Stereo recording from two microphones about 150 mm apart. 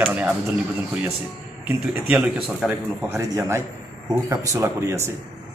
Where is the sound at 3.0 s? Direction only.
20° right (ahead or behind).